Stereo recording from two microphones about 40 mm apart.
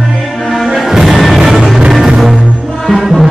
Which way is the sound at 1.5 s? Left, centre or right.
Centre.